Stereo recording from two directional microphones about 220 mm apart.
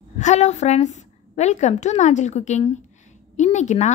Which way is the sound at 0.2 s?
30° left (ahead or behind).